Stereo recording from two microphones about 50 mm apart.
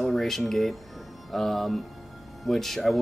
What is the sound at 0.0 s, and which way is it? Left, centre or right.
Speech, centre.